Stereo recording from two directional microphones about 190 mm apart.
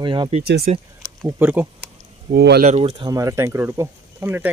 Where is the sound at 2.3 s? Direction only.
55° right (ahead or behind).